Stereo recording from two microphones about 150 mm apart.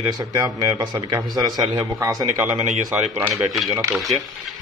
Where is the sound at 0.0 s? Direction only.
25° right (ahead or behind).